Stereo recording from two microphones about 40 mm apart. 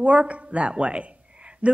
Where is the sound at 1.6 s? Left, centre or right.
Right.